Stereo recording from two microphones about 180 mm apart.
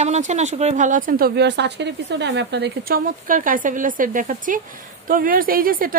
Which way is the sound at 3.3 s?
50° right (ahead or behind).